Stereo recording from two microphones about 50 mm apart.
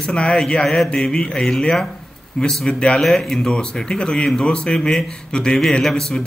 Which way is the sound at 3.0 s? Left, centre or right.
Centre.